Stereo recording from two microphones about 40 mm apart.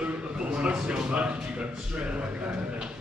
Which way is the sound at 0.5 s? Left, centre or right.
Right.